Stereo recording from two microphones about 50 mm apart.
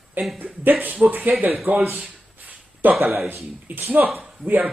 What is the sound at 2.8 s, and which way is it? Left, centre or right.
Speech, right.